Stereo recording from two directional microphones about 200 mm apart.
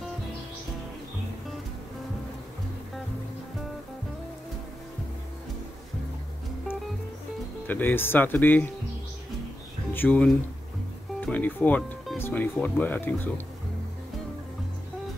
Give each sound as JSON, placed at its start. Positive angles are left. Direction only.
{"t": 7.6, "sound": "speech", "side_deg": 10}
{"t": 9.9, "sound": "speech", "side_deg": 10}